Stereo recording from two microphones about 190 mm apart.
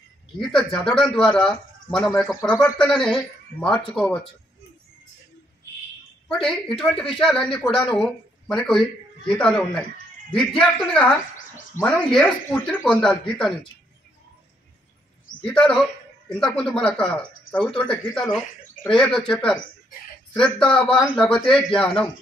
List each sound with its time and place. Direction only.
0.5 s speech: 5° left (ahead or behind)
6.2 s speech: centre (ahead or behind)
15.4 s speech: 5° left (ahead or behind)